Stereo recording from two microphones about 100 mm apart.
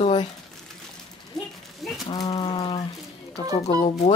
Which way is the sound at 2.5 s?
55° left (ahead or behind).